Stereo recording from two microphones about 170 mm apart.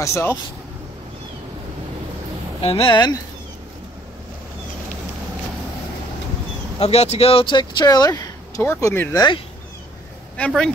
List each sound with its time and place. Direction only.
0.0 s speech: 15° left (ahead or behind)
2.6 s speech: 35° left (ahead or behind)
6.8 s speech: 40° left (ahead or behind); by 9.2 s 15° left (ahead or behind)
10.3 s speech: 5° left (ahead or behind)